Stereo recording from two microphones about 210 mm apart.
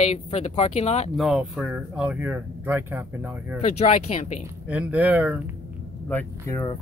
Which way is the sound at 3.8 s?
30° left (ahead or behind).